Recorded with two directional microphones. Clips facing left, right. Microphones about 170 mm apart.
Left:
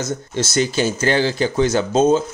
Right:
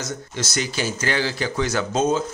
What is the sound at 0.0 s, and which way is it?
Speech, 25° left (ahead or behind).